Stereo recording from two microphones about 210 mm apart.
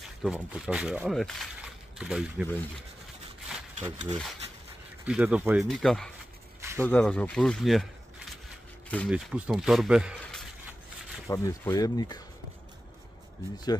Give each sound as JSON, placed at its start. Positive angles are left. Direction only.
{"t": 0.2, "sound": "a man's voice", "side_deg": -5}
{"t": 3.8, "sound": "speech", "side_deg": -25}
{"t": 5.0, "sound": "a man's voice", "side_deg": -5}
{"t": 11.2, "sound": "speech", "side_deg": 15}